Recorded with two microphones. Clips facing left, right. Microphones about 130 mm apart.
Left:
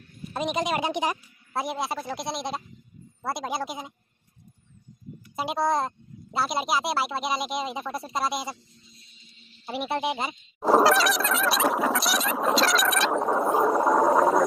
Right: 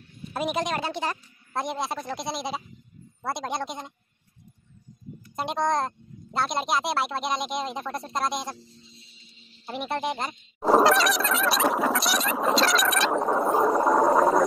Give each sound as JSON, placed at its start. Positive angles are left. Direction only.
{"t": 0.3, "sound": "a woman's voice", "side_deg": -5}
{"t": 0.7, "sound": "speech", "side_deg": 15}
{"t": 1.6, "sound": "speech", "side_deg": 0}
{"t": 5.3, "sound": "speech", "side_deg": 5}
{"t": 8.5, "sound": "a sound", "side_deg": -30}
{"t": 9.7, "sound": "speech", "side_deg": 5}